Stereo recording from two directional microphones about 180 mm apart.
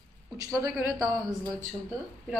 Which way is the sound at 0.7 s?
15° right (ahead or behind).